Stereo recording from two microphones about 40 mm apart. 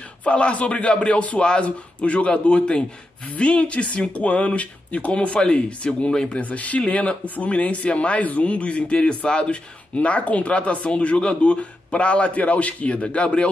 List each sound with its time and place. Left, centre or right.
0.2 s speech: left
6.4 s speech: left